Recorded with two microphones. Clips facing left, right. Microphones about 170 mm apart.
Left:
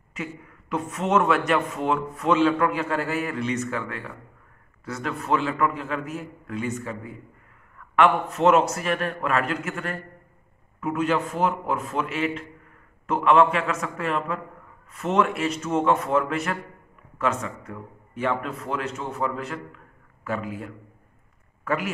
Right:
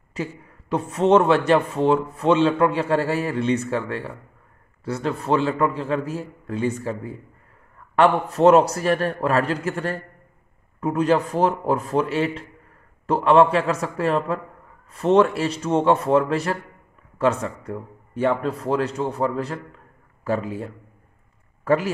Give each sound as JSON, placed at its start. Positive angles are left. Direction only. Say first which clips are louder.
{"t": 0.1, "sound": "a man's voice", "louder": "right 4 dB", "side_deg": -30}